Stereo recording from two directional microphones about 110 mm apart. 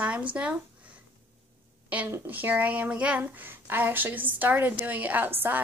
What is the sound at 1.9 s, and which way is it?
A woman's voice, 15° right (ahead or behind).